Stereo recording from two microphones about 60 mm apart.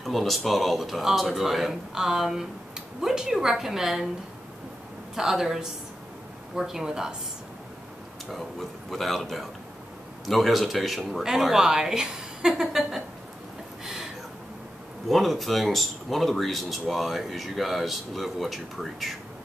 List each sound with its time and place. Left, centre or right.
0.0 s a woman's voice: centre
5.1 s a woman's voice: centre
8.3 s a woman's voice: centre
15.0 s speech: centre